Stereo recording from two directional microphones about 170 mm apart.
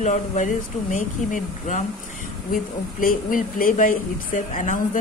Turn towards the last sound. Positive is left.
turn(degrees=50)  # may be behind; listen again after turning